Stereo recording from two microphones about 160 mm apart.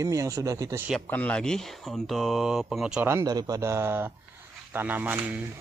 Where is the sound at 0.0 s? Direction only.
20° right (ahead or behind).